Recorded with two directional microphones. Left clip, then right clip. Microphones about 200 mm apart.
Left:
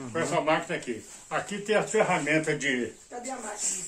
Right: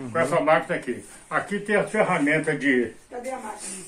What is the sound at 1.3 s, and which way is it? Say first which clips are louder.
Speech: right 3 dB; 35° left (ahead or behind).